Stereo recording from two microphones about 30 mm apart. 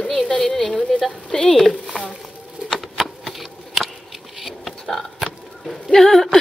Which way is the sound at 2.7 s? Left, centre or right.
Centre.